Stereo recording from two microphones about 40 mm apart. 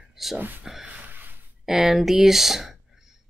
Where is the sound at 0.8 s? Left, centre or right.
Right.